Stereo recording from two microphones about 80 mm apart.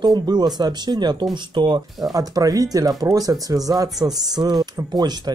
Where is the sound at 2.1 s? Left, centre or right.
Right.